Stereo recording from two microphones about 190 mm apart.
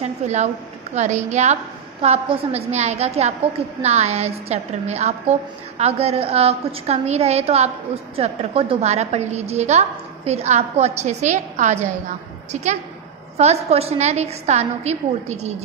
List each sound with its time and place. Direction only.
0.0 s a woman's voice: 40° right (ahead or behind)